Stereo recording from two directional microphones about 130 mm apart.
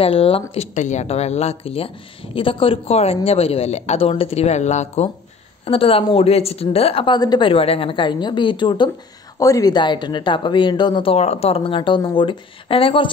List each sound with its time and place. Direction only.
0.0 s a woman's voice: 45° left (ahead or behind)
5.7 s a woman's voice: 45° left (ahead or behind)